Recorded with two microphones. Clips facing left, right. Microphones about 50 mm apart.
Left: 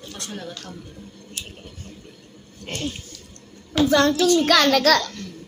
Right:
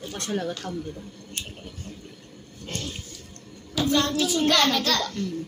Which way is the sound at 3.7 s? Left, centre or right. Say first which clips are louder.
Left 6 dB; left.